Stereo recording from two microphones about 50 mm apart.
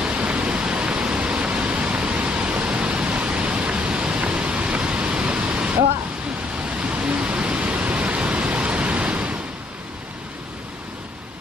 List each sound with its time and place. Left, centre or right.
0.0 s pink noise: right